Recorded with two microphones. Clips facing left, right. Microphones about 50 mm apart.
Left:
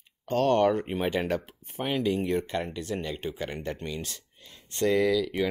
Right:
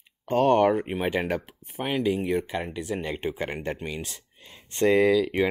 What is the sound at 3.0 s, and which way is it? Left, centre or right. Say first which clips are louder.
Speech: right 3 dB; right.